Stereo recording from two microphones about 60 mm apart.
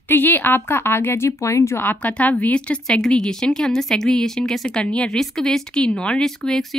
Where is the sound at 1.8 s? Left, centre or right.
Left.